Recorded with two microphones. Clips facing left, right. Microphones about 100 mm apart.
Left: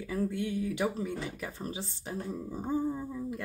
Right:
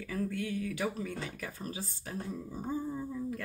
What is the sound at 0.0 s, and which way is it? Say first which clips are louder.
Speech: left 3 dB; 20° left (ahead or behind).